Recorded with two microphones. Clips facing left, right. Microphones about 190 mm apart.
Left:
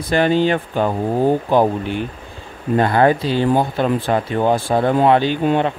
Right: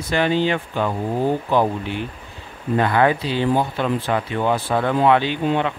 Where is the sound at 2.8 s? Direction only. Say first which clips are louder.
Left 3 dB; 40° left (ahead or behind).